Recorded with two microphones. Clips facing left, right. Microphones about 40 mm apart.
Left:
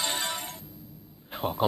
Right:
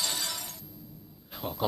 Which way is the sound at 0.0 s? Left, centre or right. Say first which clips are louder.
Left 4 dB; left.